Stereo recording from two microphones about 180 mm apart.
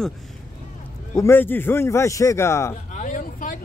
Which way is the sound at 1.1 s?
15° left (ahead or behind).